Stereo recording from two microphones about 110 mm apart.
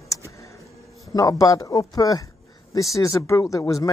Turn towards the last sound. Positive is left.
turn(degrees=30)  # may be behind; listen again after turning